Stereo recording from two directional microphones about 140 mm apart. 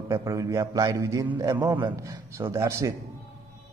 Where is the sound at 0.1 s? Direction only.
20° right (ahead or behind).